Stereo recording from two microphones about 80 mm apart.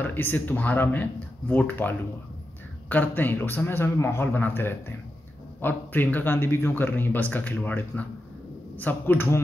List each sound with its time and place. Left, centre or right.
0.0 s speech: left